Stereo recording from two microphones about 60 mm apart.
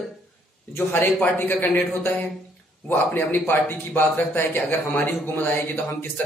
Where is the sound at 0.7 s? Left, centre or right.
Left.